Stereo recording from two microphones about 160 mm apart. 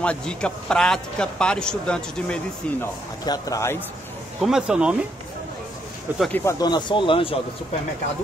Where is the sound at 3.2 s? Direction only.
25° left (ahead or behind).